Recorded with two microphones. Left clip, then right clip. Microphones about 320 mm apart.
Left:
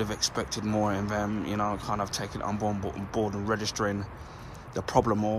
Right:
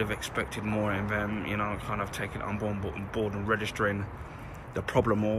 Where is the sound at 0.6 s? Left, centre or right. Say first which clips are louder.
Left 5 dB; centre.